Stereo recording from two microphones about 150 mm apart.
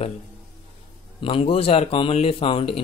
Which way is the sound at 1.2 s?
40° left (ahead or behind).